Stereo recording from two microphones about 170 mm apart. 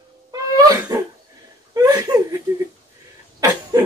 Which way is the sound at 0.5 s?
20° right (ahead or behind).